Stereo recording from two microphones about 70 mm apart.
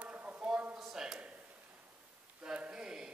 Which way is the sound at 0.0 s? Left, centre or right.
Right.